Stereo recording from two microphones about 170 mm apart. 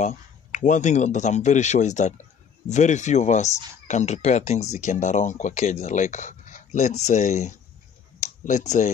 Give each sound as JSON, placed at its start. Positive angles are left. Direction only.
{"t": 0.0, "sound": "speech", "side_deg": 45}